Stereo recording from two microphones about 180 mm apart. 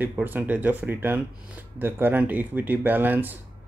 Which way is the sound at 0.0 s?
10° right (ahead or behind).